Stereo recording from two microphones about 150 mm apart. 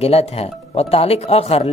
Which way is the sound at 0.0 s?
45° left (ahead or behind).